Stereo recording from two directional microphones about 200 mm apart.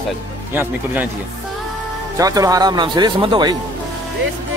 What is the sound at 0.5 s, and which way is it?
Speech, 10° right (ahead or behind).